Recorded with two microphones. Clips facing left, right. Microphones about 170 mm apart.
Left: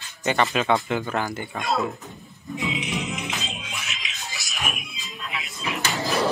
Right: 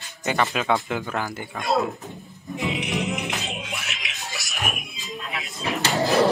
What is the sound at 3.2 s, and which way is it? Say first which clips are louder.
Music: right 2 dB; 65° right (ahead or behind).